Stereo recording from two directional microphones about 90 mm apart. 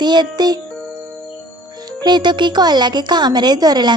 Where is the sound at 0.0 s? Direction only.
55° right (ahead or behind).